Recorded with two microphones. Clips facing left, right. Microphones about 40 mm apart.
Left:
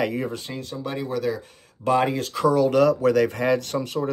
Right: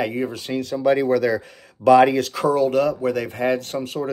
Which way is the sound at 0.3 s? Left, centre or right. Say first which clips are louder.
Right 5 dB; right.